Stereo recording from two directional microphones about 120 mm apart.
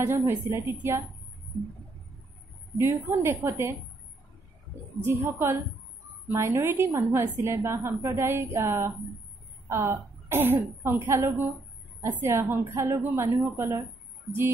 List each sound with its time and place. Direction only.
0.0 s a woman's voice: 20° right (ahead or behind)
2.8 s a woman's voice: 20° right (ahead or behind)
5.0 s a woman's voice: 20° right (ahead or behind)